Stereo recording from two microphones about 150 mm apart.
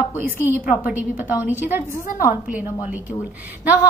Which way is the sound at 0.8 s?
10° right (ahead or behind).